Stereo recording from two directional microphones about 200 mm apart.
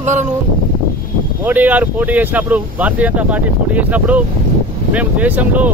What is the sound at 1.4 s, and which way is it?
Speech, 10° right (ahead or behind).